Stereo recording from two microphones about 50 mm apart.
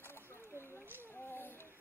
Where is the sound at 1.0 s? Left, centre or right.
Left.